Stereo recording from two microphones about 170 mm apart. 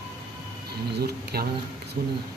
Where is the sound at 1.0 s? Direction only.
70° right (ahead or behind).